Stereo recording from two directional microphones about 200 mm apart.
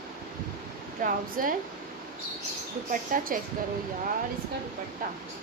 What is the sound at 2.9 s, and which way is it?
Speech, 40° right (ahead or behind).